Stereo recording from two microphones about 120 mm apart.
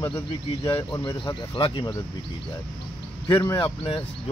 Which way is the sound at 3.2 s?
35° left (ahead or behind).